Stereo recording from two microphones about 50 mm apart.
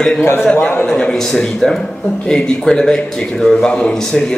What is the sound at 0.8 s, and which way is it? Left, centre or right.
A man's voice, centre.